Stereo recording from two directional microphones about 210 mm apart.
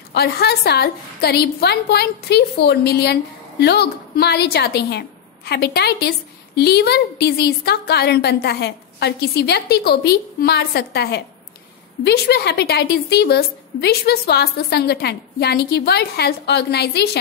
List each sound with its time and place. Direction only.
0.1 s a woman's voice: 50° left (ahead or behind)